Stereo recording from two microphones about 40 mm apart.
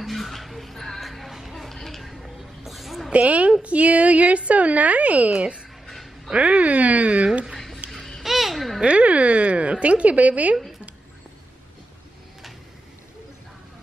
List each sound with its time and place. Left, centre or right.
0.0 s music: centre
3.1 s a woman's voice: right
5.9 s dog: centre
6.3 s a woman's voice: right
7.5 s a sound: centre
7.9 s babbling: centre
8.8 s a sound: right